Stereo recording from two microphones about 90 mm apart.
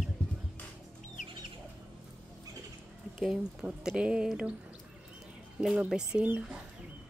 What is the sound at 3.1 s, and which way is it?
Speech, 5° right (ahead or behind).